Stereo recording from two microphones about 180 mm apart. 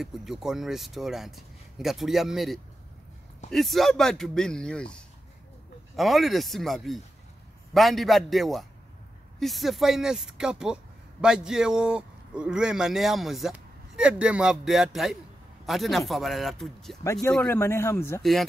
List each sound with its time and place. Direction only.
0.0 s speech: centre (ahead or behind)
17.0 s speech: 15° left (ahead or behind)
18.2 s speech: centre (ahead or behind)